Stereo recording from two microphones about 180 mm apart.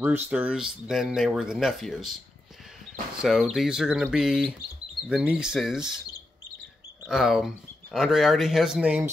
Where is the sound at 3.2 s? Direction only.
5° right (ahead or behind).